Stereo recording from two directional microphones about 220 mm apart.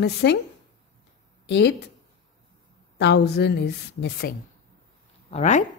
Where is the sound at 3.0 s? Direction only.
50° left (ahead or behind).